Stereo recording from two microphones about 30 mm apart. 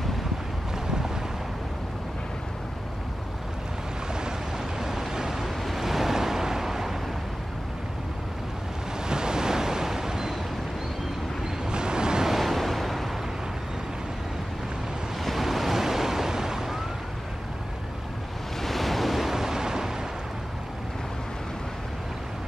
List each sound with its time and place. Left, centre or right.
4.7 s vehicle: centre
9.0 s waves: right
11.7 s waves: right
12.3 s waves: centre
15.4 s waves: centre
18.6 s waves: centre; by 19.9 s right